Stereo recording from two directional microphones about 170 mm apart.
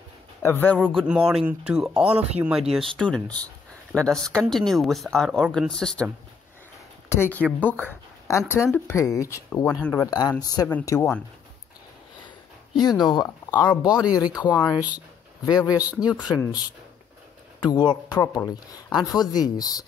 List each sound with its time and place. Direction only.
0.4 s speech: 15° left (ahead or behind); by 2.6 s 10° right (ahead or behind)
2.7 s speech: 5° left (ahead or behind)
7.1 s speech: 10° left (ahead or behind)
10.7 s speech: 10° left (ahead or behind)
12.7 s speech: 25° left (ahead or behind)
17.6 s speech: 25° left (ahead or behind)